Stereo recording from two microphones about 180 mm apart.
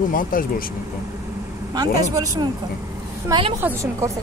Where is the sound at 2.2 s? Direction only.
20° right (ahead or behind).